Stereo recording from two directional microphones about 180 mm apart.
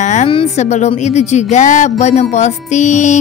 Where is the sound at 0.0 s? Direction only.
40° left (ahead or behind).